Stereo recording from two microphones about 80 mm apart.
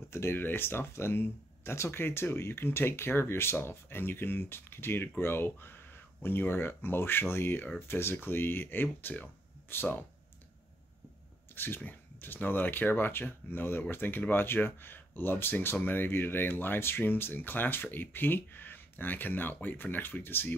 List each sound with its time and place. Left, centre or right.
0.1 s speech: left
11.5 s speech: left